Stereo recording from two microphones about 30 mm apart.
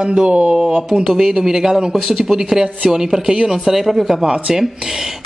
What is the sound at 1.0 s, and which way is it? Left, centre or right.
A woman's voice, centre.